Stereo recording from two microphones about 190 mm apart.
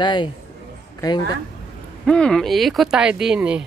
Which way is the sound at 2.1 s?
5° left (ahead or behind).